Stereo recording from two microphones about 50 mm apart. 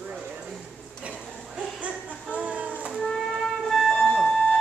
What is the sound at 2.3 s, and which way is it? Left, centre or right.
Music, right.